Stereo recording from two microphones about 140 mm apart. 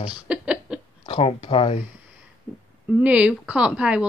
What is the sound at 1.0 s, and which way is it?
Speech, 40° left (ahead or behind).